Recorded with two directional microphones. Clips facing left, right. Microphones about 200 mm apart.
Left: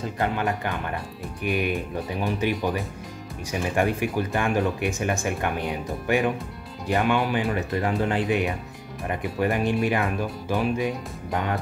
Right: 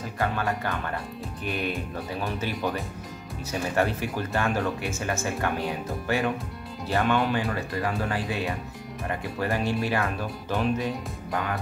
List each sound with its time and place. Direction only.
0.2 s speech: 20° left (ahead or behind)